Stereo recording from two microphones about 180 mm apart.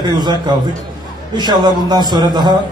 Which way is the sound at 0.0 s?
20° right (ahead or behind).